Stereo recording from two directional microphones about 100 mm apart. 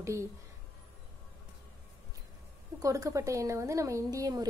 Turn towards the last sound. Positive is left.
turn(degrees=-35)  # may be behind; listen again after turning